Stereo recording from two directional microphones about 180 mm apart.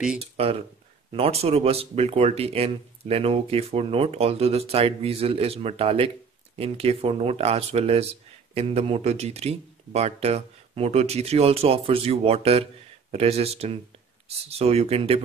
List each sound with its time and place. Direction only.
0.2 s speech: 35° right (ahead or behind)